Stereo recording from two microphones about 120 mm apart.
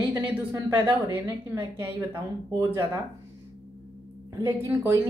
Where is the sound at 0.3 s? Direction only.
15° right (ahead or behind).